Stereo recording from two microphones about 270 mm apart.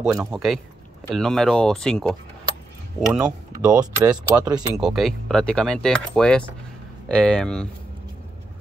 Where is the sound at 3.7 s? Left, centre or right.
Centre.